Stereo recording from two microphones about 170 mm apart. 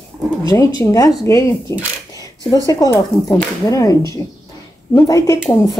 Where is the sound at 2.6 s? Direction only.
20° left (ahead or behind).